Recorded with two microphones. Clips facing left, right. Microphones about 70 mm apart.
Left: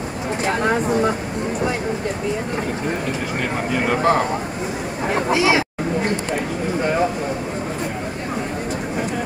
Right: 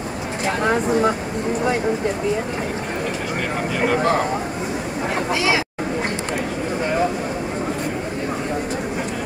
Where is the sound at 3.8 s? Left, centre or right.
Centre.